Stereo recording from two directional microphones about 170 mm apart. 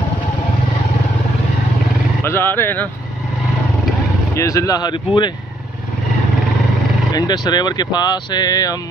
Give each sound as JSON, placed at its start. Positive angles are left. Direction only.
{"t": 2.2, "sound": "speech", "side_deg": 15}
{"t": 4.4, "sound": "speech", "side_deg": 20}
{"t": 7.1, "sound": "speech", "side_deg": 25}